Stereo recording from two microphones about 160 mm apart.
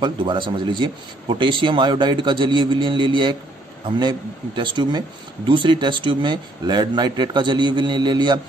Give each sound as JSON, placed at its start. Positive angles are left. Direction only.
{"t": 0.0, "sound": "a man's voice", "side_deg": -30}